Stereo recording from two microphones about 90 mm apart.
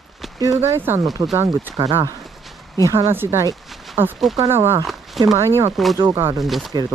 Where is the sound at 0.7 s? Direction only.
25° right (ahead or behind).